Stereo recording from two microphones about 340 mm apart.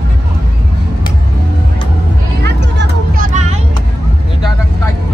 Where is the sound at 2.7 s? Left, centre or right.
Right.